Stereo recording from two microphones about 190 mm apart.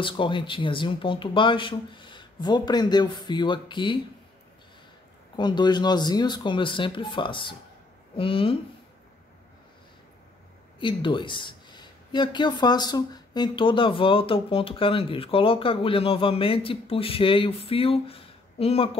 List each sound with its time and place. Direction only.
0.0 s speech: 25° left (ahead or behind)
5.3 s speech: 25° left (ahead or behind)
10.8 s speech: 25° left (ahead or behind)